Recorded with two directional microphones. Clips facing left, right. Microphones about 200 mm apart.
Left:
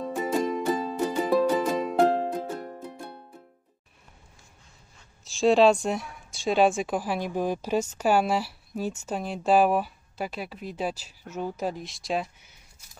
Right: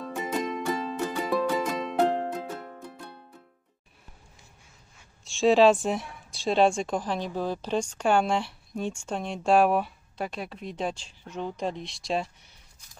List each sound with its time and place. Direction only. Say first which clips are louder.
0.2 s music: left 4 dB; 35° left (ahead or behind)
2.0 s music: left 2 dB; 10° left (ahead or behind)
2.5 s music: left 4 dB; 25° left (ahead or behind)
5.2 s speech: even; centre (ahead or behind)